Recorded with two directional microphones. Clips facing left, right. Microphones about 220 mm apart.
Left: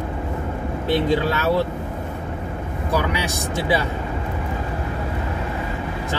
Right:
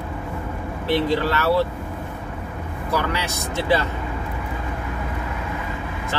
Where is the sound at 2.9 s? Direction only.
15° left (ahead or behind).